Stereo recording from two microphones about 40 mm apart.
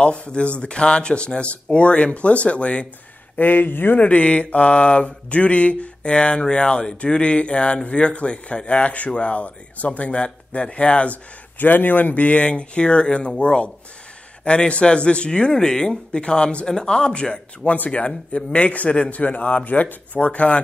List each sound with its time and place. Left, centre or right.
0.0 s mantra: left
3.3 s speech: left
4.0 s mantra: left
11.5 s speech: left
13.4 s mantra: left
15.5 s speech: centre
16.2 s mantra: left
17.7 s speech: left